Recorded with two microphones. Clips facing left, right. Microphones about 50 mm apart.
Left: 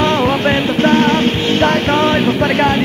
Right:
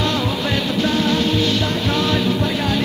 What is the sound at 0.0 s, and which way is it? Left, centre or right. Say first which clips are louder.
Music: left 7 dB; left.